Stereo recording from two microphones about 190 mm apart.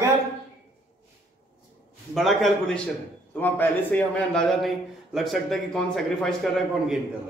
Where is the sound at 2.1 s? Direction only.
Centre (ahead or behind).